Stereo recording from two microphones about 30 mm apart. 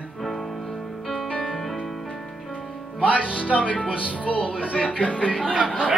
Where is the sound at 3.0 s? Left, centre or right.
Right.